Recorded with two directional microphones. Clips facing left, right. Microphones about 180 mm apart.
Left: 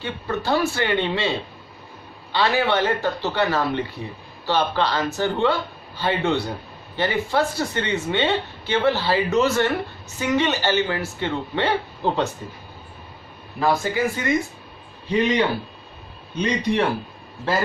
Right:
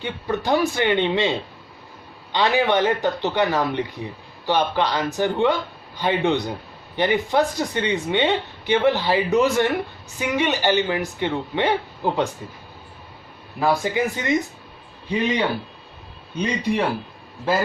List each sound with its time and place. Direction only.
0.0 s speech: 15° right (ahead or behind)
2.3 s speech: 15° right (ahead or behind)
13.6 s speech: 20° right (ahead or behind)